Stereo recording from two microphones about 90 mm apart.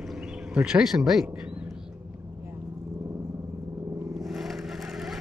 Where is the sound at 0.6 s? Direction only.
5° right (ahead or behind).